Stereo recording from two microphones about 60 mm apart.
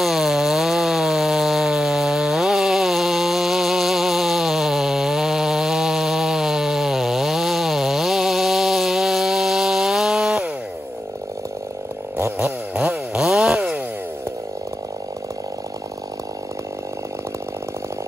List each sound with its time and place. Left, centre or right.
0.0 s chainsaw: centre
13.3 s chainsaw: centre